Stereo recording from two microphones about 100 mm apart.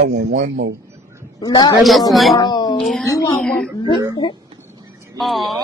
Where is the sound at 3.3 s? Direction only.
5° left (ahead or behind).